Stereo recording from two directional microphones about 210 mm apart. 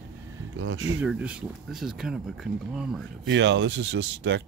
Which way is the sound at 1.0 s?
5° right (ahead or behind).